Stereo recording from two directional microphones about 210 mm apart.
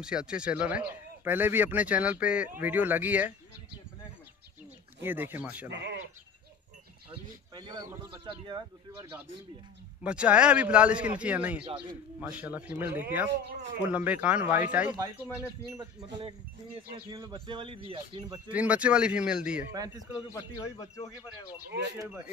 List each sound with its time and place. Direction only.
0.0 s speech: 5° right (ahead or behind)
5.0 s speech: 10° right (ahead or behind)
5.7 s speech: 55° right (ahead or behind)
7.1 s speech: 20° right (ahead or behind)
10.0 s a man's voice: 5° right (ahead or behind)
11.6 s speech: 25° right (ahead or behind)
12.2 s speech: 5° right (ahead or behind)
17.1 s speech: 20° right (ahead or behind)
18.5 s a man's voice: 5° right (ahead or behind)
20.2 s a man's voice: 20° left (ahead or behind)
21.9 s speech: 15° right (ahead or behind)